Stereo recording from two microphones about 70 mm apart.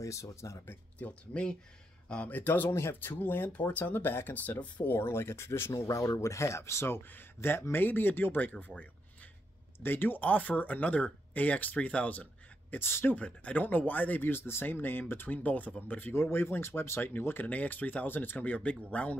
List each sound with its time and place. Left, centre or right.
0.0 s speech: left
0.9 s speech: left
4.9 s speech: left
5.7 s speech: left
9.8 s speech: left
12.7 s speech: left
13.1 s speech: left
16.2 s speech: left; by 19.1 s centre